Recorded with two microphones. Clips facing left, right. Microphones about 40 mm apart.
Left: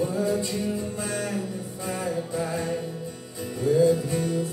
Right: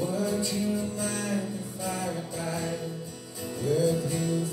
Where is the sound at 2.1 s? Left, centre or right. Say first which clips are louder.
Left 5 dB; centre.